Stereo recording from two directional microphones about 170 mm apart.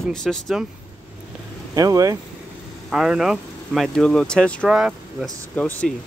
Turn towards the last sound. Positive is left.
turn(degrees=5)  # may be behind; listen again after turning